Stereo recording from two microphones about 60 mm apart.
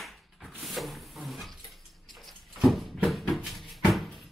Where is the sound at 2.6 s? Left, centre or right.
Centre.